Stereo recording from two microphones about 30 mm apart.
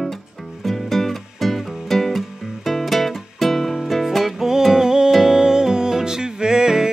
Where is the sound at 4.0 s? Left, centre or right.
Centre.